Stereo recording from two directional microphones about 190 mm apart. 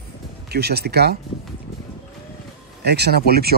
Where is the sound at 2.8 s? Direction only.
60° right (ahead or behind).